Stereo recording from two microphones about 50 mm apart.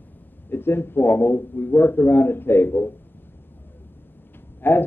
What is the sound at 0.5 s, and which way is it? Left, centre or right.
A man's voice, left.